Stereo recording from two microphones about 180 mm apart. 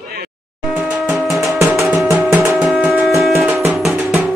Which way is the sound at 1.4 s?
15° right (ahead or behind).